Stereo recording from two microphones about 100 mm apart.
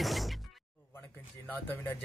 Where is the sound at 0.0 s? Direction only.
Centre (ahead or behind).